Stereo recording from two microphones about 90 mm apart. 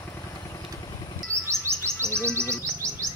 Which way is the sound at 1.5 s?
30° right (ahead or behind).